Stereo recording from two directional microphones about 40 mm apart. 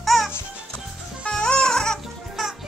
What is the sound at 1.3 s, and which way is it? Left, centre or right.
Music, centre.